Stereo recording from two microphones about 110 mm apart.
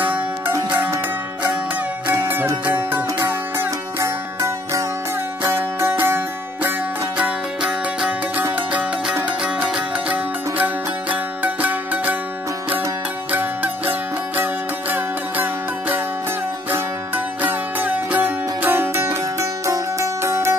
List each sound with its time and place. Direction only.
0.7 s music: 20° right (ahead or behind)
2.0 s music: 20° right (ahead or behind)
7.2 s music: 10° right (ahead or behind)
13.3 s music: 15° right (ahead or behind)